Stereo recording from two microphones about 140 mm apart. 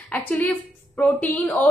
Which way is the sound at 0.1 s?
10° left (ahead or behind).